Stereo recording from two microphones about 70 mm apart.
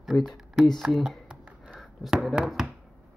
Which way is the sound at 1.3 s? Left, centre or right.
Centre.